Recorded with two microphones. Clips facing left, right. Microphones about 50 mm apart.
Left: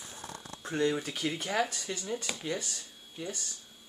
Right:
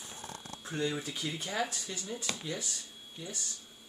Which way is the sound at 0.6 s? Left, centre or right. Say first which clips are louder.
Left 5 dB; left.